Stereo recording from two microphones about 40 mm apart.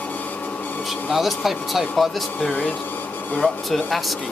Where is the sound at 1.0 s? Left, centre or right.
Centre.